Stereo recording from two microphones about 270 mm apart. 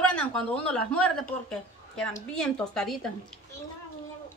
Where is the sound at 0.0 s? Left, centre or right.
Centre.